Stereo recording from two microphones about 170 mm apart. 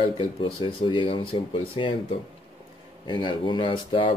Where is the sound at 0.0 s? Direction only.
30° left (ahead or behind).